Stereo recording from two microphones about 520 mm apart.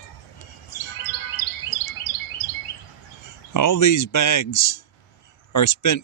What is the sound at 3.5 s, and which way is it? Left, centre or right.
Speech, left.